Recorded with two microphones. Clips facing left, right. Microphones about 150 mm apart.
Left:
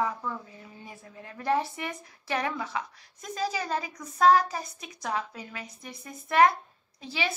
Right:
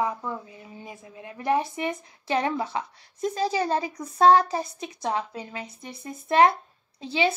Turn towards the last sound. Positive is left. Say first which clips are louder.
# right 8 dB
turn(degrees=-25)  # may be behind; listen again after turning